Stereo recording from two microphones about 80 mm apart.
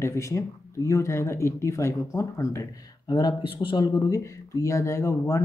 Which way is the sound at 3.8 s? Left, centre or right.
Left.